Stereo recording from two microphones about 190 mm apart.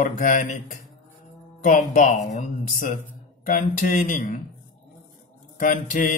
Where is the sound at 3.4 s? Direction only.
45° left (ahead or behind).